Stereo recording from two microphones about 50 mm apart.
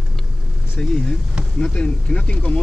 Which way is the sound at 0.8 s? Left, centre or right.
Left.